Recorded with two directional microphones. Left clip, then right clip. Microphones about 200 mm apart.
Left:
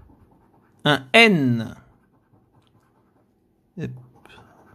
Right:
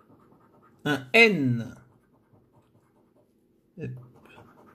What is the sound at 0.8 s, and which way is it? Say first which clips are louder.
Speech: left 5 dB; 35° left (ahead or behind).